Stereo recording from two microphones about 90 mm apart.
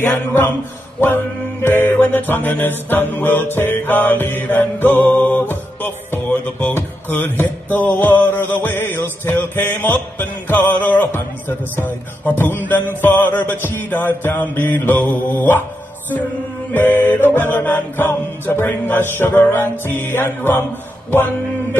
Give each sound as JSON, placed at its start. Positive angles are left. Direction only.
{"t": 0.0, "sound": "music", "side_deg": 25}
{"t": 16.7, "sound": "music", "side_deg": 20}